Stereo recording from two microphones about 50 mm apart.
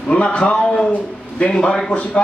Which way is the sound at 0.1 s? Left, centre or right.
Left.